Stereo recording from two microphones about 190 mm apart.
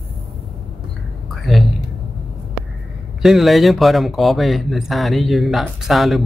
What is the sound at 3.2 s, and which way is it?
Speech, centre (ahead or behind).